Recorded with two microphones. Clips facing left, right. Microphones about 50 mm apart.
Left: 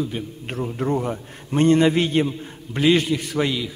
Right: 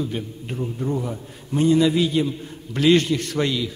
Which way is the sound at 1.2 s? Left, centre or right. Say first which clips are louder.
Left 1 dB; left.